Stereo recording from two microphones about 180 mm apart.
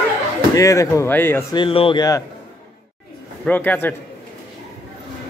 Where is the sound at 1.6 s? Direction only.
30° left (ahead or behind).